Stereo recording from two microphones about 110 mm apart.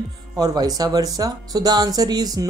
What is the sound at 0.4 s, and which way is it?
Speech, 35° right (ahead or behind).